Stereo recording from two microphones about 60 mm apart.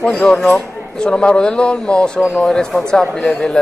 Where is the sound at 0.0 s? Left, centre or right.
Centre.